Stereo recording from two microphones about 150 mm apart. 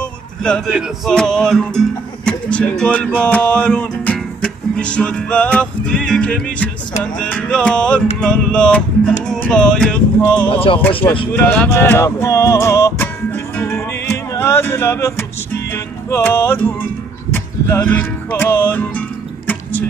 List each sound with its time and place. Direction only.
0.0 s music: 5° left (ahead or behind)
10.5 s speech: 35° left (ahead or behind)
11.3 s music: 10° left (ahead or behind)